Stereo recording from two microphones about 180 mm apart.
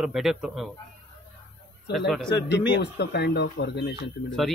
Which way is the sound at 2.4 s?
70° left (ahead or behind).